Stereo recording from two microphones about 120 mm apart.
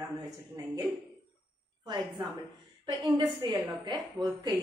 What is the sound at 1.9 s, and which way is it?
Speech, 35° right (ahead or behind).